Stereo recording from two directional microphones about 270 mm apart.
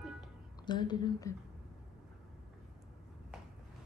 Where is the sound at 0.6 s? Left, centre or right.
Centre.